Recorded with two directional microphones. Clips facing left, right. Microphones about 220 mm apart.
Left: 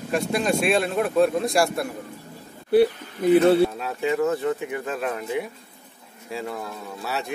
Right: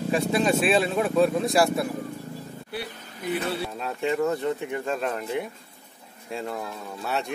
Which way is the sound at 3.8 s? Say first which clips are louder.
Left 2 dB; 5° left (ahead or behind).